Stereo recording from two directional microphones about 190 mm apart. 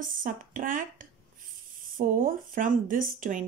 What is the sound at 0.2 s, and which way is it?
Speech, 45° right (ahead or behind).